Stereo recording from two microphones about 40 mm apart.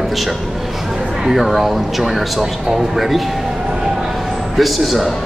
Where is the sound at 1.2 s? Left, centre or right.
Centre.